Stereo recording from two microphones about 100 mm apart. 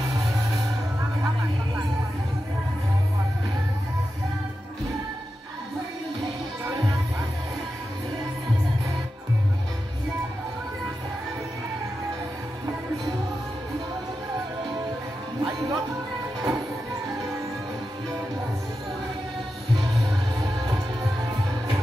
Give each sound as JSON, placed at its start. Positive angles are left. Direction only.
{"t": 6.6, "sound": "music", "side_deg": -40}
{"t": 15.4, "sound": "music", "side_deg": -45}
{"t": 20.3, "sound": "music", "side_deg": -45}